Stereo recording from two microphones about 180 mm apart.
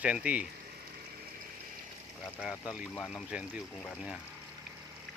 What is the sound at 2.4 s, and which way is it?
Speech, 5° right (ahead or behind).